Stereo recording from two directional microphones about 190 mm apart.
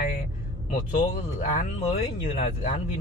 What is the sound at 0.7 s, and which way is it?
Mantra, 40° left (ahead or behind).